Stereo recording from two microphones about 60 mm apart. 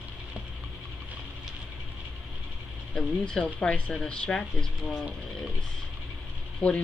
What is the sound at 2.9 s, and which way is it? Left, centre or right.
Speech, centre.